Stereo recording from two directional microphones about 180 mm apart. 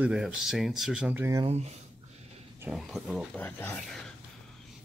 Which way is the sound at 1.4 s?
35° right (ahead or behind).